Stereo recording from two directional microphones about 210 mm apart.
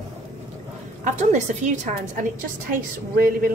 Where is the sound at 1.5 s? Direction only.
40° right (ahead or behind).